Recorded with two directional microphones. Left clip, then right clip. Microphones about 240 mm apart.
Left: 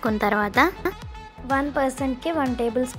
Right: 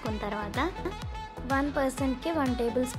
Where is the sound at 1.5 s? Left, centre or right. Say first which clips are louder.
Left 6 dB; centre.